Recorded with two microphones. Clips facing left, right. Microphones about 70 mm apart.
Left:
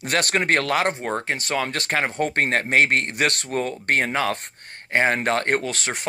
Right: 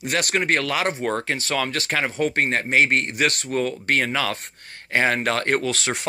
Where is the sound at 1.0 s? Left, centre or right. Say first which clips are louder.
Right 1 dB; left.